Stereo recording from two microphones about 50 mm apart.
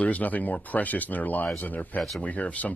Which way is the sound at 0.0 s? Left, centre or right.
Left.